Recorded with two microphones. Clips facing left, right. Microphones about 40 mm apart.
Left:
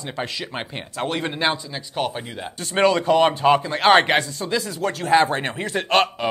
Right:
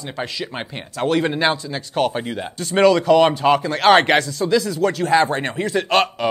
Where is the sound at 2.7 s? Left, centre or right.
Left.